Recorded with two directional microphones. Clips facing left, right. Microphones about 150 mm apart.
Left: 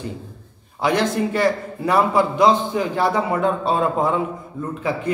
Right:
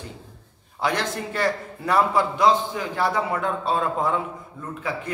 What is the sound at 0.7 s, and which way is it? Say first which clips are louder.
A man's voice: left 6 dB; 15° left (ahead or behind).